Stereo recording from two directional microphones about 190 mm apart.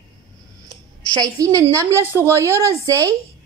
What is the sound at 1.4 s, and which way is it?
A woman's voice, 15° right (ahead or behind).